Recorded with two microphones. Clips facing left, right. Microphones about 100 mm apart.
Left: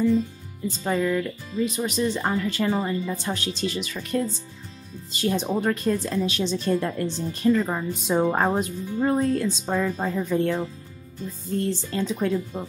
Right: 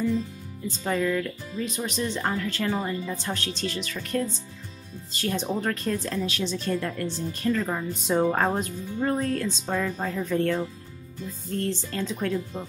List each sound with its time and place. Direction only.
0.7 s speech: 10° left (ahead or behind)
6.2 s speech: 25° left (ahead or behind)